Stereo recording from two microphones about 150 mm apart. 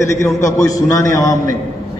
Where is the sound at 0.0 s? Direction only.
20° left (ahead or behind).